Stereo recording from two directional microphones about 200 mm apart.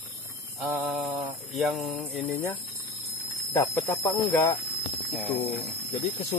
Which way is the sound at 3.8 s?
10° left (ahead or behind).